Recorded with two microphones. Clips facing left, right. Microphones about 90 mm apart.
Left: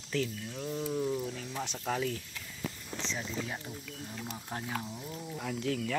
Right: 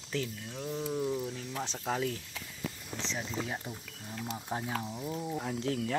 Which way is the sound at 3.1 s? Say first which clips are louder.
Right 1 dB; 25° right (ahead or behind).